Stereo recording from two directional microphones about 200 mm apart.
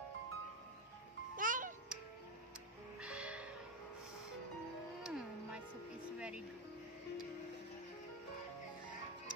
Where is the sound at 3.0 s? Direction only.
5° right (ahead or behind).